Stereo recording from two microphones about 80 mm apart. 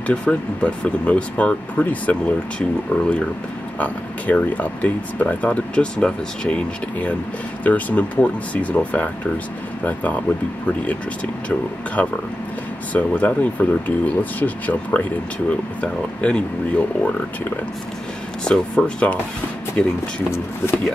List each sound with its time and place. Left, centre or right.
0.0 s speech: centre
3.8 s speech: centre
11.4 s speech: centre
18.4 s speech: centre
20.2 s speech: left